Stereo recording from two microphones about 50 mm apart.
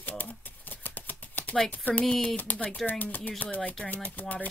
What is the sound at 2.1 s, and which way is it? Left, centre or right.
Speech, centre.